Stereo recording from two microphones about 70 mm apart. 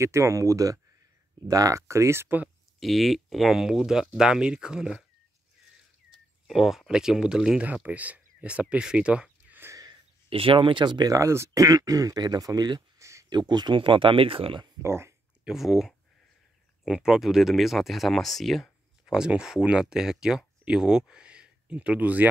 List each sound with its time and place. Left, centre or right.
0.0 s speech: right
2.8 s speech: centre
6.4 s speech: centre
7.6 s speech: right
10.8 s speech: right
11.1 s speech: right
13.0 s a sound: right
13.3 s speech: right
14.8 s speech: right
15.4 s speech: centre; by 22.3 s right